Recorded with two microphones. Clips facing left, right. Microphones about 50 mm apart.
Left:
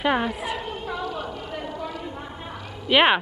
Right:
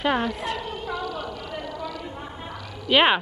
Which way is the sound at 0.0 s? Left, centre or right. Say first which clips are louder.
Left 1 dB; centre.